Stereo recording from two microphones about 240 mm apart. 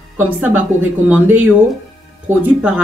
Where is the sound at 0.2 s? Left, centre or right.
Centre.